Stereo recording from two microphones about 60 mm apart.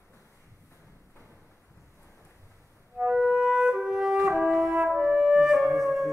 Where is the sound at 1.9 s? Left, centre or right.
Left.